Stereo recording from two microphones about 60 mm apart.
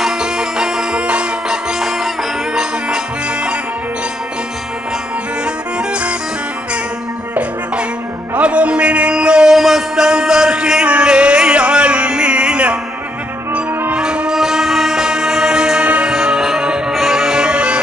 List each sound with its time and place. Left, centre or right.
0.0 s music: centre
5.4 s music: centre
8.4 s a sound: centre
13.9 s music: centre